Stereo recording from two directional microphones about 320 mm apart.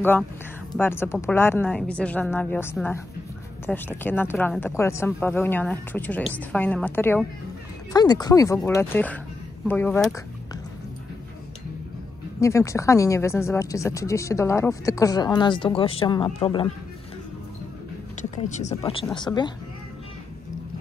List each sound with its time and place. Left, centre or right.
0.0 s a woman's voice: centre
12.4 s speech: centre
18.3 s speech: left